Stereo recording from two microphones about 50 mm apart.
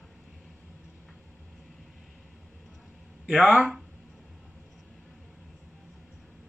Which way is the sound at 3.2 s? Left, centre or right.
Centre.